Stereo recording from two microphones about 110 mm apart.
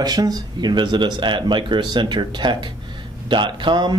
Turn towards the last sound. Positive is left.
turn(degrees=-45)  # may be behind; listen again after turning